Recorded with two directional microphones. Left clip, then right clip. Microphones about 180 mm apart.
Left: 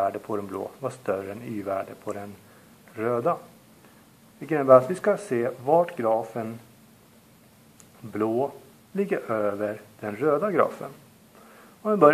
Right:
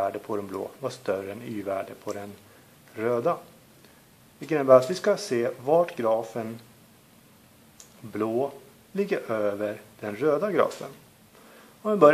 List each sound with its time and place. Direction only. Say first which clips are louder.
0.0 s speech: left 2 dB; 35° right (ahead or behind)
4.4 s speech: left 1 dB; 35° right (ahead or behind)
8.1 s a man's voice: left 2 dB; 35° right (ahead or behind)